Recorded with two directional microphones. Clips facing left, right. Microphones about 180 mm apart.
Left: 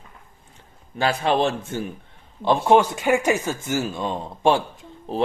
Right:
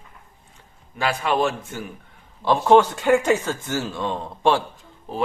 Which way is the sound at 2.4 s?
15° left (ahead or behind).